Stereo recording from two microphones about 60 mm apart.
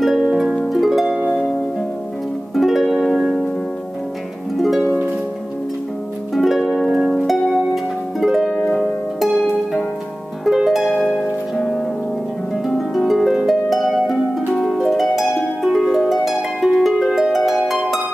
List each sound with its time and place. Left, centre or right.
0.0 s harp: centre
2.5 s music: centre
6.3 s harp: centre
7.2 s harp: centre
9.4 s harp: centre
12.6 s harp: centre